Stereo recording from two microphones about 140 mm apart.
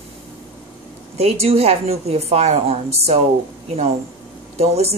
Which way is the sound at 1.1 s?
45° right (ahead or behind).